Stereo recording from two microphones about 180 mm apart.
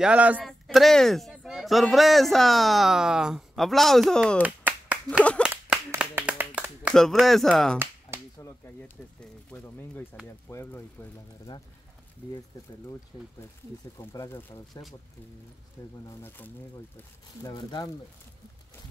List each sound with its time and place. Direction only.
0.0 s speech: 5° right (ahead or behind)
4.4 s finger snapping: 10° right (ahead or behind)
5.4 s clapping: 5° right (ahead or behind)
6.9 s speech: 5° left (ahead or behind)
8.4 s whip: 15° left (ahead or behind)
9.2 s a sound: 10° left (ahead or behind)
10.5 s speech: 15° left (ahead or behind)
11.5 s speech: 30° left (ahead or behind)
13.1 s speech: 20° left (ahead or behind)
16.1 s speech: 10° left (ahead or behind)
17.5 s speech: 25° left (ahead or behind)